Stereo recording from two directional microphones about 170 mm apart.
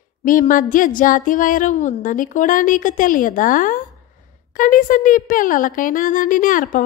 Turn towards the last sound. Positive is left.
turn(degrees=50)  # may be behind; listen again after turning